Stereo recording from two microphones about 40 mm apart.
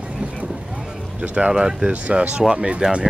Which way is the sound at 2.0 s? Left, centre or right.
Right.